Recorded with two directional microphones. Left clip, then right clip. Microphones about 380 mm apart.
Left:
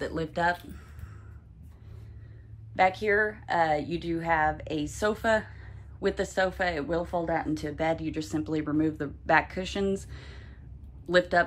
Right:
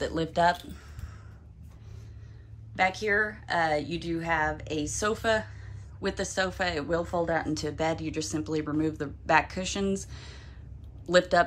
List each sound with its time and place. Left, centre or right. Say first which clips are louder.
0.0 s speech: right 3 dB; centre
2.7 s speech: left 2 dB; centre